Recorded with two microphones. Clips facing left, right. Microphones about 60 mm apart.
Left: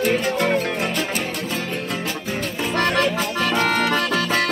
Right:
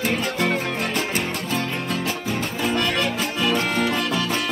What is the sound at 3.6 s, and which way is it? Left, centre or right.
Music, left.